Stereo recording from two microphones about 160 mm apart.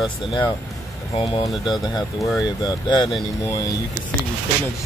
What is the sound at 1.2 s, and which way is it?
Speech, 35° left (ahead or behind).